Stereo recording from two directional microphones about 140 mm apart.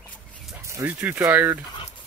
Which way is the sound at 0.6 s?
20° right (ahead or behind).